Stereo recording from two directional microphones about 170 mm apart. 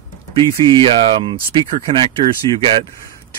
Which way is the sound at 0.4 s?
30° right (ahead or behind).